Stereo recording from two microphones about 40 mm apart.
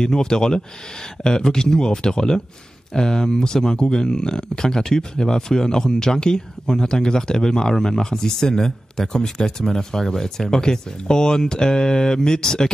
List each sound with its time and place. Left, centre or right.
0.0 s speech: centre